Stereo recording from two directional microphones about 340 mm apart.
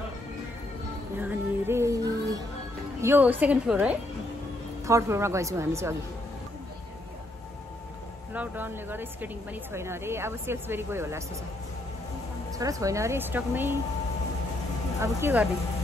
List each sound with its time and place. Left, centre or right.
1.2 s music: centre
3.0 s a woman's voice: centre
8.3 s speech: centre
12.5 s speech: centre
15.0 s speech: centre